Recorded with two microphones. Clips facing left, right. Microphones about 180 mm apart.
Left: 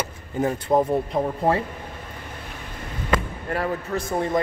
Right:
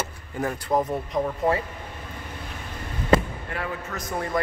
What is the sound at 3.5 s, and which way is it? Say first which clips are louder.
Speech: left 8 dB; 40° left (ahead or behind).